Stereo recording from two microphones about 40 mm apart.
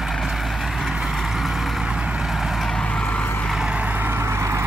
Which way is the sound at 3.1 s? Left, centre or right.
Left.